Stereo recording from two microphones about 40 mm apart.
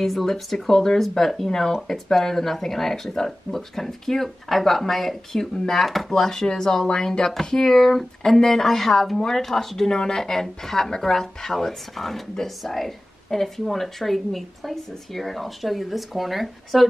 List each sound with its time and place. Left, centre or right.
0.0 s speech: centre
6.1 s speech: centre